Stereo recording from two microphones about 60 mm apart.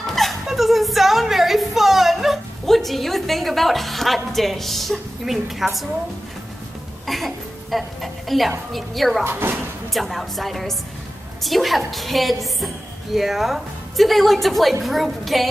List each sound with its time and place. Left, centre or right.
0.0 s music: centre
7.1 s a woman's voice: centre
9.2 s speech: right
9.9 s a woman's voice: centre